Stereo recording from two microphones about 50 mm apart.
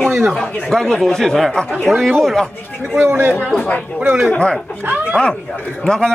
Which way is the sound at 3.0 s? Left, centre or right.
Right.